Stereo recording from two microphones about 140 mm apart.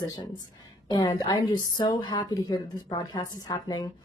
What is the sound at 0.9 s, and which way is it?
A woman's voice, 30° left (ahead or behind).